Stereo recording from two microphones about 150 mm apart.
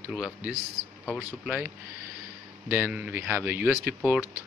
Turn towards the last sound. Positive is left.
turn(degrees=-10)  # may be behind; listen again after turning